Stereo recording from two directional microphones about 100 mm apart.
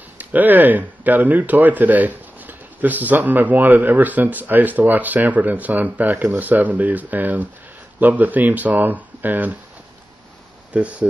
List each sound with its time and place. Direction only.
0.2 s speech: 15° right (ahead or behind)
10.7 s speech: 15° right (ahead or behind)